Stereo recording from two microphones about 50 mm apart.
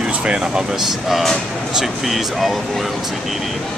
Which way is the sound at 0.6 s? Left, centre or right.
Centre.